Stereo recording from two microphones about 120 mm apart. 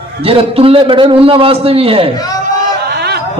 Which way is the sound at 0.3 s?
50° right (ahead or behind).